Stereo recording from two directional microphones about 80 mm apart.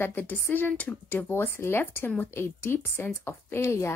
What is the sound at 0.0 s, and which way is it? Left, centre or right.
A woman's voice, left.